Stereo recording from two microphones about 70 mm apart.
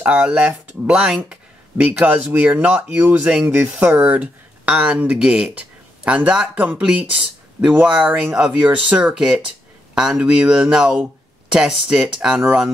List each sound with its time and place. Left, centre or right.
0.0 s speech: centre
8.2 s speech: centre
8.6 s speech: right